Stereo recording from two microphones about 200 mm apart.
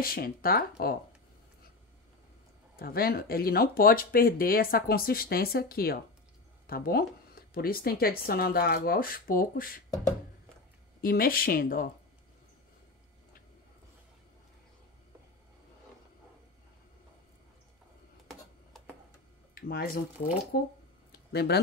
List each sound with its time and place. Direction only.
0.0 s speech: 50° left (ahead or behind)
2.8 s speech: 50° left (ahead or behind)
11.0 s speech: 45° left (ahead or behind)
19.5 s speech: 50° left (ahead or behind)